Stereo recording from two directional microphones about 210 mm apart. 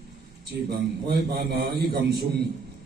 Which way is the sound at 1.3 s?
50° right (ahead or behind).